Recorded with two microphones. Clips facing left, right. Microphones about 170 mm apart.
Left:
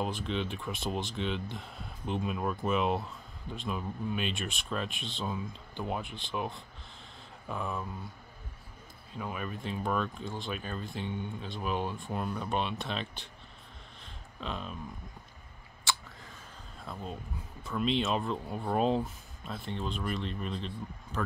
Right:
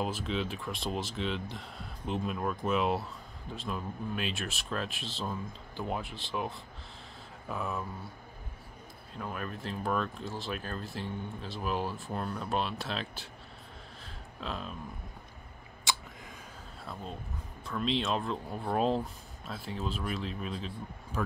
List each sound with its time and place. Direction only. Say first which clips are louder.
0.0 s speech: even; centre (ahead or behind)
9.1 s speech: left 1 dB; 5° left (ahead or behind)
14.4 s speech: even; centre (ahead or behind)
15.9 s a sound: even; 15° right (ahead or behind)
16.8 s speech: left 1 dB; 5° left (ahead or behind)